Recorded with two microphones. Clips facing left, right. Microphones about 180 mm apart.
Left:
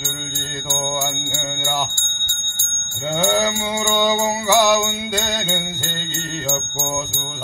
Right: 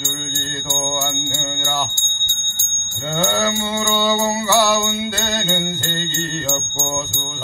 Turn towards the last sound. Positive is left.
turn(degrees=10)  # may be behind; listen again after turning